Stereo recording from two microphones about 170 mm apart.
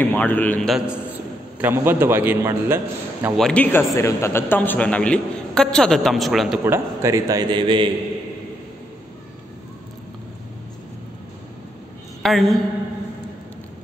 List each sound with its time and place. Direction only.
0.0 s a man's voice: 10° left (ahead or behind); by 3.3 s 15° right (ahead or behind)
3.3 s a man's voice: 5° left (ahead or behind)
6.6 s a man's voice: 15° right (ahead or behind)
12.2 s a woman's voice: centre (ahead or behind)